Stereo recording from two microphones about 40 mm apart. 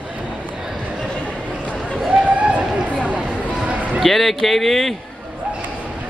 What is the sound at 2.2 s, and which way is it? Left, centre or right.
Run, right.